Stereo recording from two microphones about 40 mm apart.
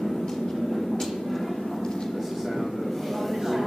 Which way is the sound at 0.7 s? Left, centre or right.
Centre.